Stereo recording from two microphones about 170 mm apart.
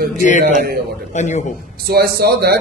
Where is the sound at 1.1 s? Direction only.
45° left (ahead or behind).